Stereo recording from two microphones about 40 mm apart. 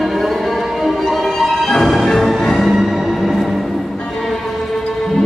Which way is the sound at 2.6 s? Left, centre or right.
Centre.